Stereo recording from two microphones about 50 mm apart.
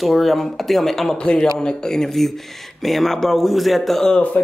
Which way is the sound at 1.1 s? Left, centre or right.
Centre.